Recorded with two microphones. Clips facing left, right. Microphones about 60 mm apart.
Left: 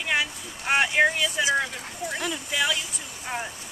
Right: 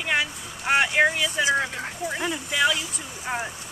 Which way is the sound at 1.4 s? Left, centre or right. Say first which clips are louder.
Right 2 dB; right.